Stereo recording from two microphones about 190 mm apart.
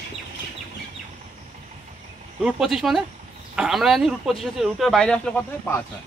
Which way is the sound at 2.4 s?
5° right (ahead or behind).